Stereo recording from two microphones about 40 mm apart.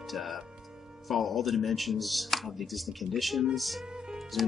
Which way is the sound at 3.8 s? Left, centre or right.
Centre.